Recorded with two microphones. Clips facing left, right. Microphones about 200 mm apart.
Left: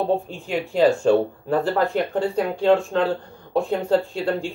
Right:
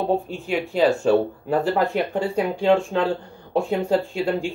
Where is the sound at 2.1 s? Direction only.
10° right (ahead or behind).